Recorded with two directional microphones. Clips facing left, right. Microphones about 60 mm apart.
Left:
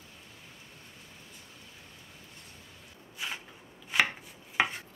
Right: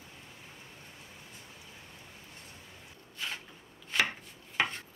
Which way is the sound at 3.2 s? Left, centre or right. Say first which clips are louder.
Left 1 dB; centre.